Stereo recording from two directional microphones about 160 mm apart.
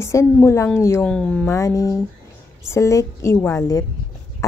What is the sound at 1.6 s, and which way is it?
A woman's voice, 20° left (ahead or behind).